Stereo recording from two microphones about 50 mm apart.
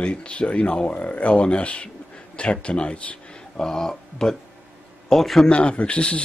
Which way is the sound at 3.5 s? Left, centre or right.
Centre.